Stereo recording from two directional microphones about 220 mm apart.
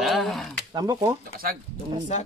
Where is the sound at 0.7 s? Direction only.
20° right (ahead or behind).